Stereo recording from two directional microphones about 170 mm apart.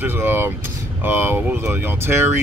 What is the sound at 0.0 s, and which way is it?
Speech, 10° right (ahead or behind).